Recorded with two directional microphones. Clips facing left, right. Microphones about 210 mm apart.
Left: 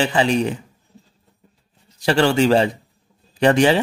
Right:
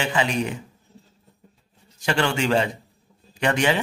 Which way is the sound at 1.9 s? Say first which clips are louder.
Left 7 dB; 35° left (ahead or behind).